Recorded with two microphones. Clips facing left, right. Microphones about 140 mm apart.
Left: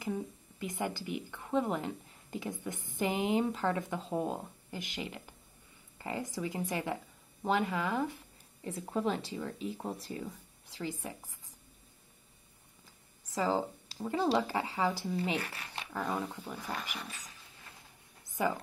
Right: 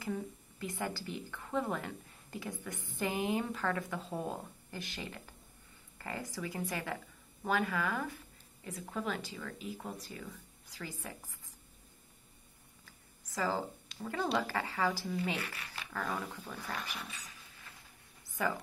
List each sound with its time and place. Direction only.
0.0 s speech: 20° left (ahead or behind)
12.8 s a sound: 20° left (ahead or behind)
13.8 s speech: 25° left (ahead or behind)
15.3 s speech: 30° left (ahead or behind); by 16.7 s 15° left (ahead or behind)
18.4 s speech: 20° left (ahead or behind)